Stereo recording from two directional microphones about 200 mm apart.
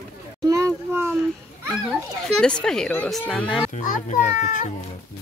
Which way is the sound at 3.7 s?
40° left (ahead or behind).